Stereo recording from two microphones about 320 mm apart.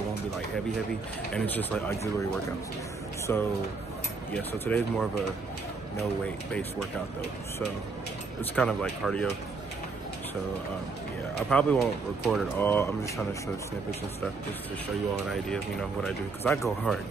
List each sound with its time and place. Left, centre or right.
1.3 s speech: centre
3.3 s speech: centre
4.6 s speech: centre
8.5 s speech: centre
11.5 s speech: centre
15.3 s speech: centre